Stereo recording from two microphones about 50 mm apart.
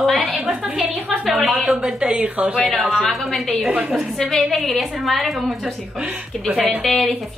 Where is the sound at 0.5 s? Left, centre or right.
Centre.